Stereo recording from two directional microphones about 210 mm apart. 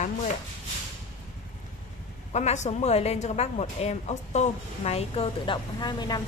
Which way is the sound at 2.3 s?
35° left (ahead or behind).